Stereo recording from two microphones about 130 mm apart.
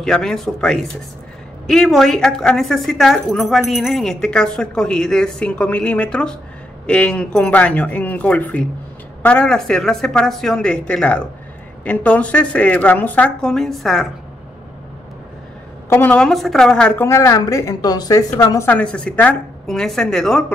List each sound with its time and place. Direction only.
0.0 s a woman's voice: 5° left (ahead or behind)
15.9 s a woman's voice: 15° left (ahead or behind)
17.0 s a woman's voice: 20° left (ahead or behind)
18.7 s a woman's voice: 10° left (ahead or behind)